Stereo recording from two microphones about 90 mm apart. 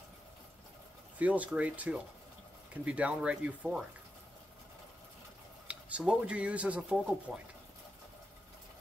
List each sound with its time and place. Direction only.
1.1 s speech: 15° right (ahead or behind)
5.7 s speech: 15° right (ahead or behind)